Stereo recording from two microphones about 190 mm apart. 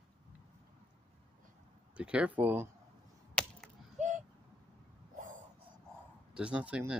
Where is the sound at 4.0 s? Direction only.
40° right (ahead or behind).